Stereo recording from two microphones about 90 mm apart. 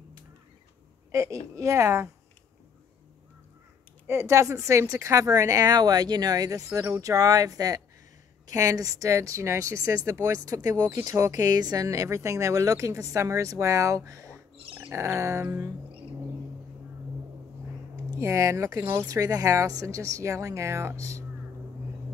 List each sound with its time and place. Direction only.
1.1 s speech: 35° right (ahead or behind)
4.1 s speech: 30° right (ahead or behind)
14.7 s a sound: 20° right (ahead or behind)
15.0 s speech: 30° right (ahead or behind)
18.2 s speech: 35° right (ahead or behind)
19.0 s speech: 40° right (ahead or behind)